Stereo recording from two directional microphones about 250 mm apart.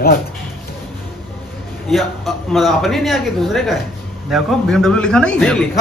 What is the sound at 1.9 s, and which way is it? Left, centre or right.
A man's voice, centre.